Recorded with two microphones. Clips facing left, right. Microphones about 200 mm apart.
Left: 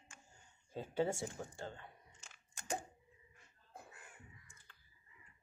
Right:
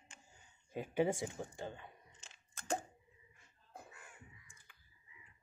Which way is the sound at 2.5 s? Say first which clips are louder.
Right 3 dB; 15° left (ahead or behind).